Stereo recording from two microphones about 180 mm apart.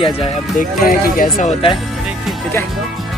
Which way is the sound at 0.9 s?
55° left (ahead or behind).